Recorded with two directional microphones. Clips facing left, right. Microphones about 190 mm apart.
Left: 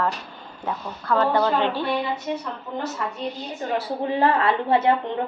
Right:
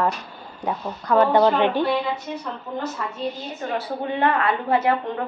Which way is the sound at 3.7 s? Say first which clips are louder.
Left 2 dB; 30° left (ahead or behind).